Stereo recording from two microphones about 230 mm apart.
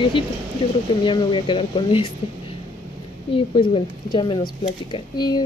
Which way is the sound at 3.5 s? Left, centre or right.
Left.